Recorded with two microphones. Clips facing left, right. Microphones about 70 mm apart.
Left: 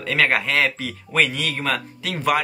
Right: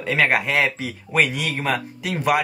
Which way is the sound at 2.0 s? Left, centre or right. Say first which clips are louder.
Right 1 dB; centre.